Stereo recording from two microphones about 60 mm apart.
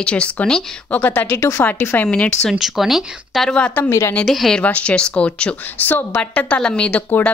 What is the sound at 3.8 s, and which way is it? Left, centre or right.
Speech, left.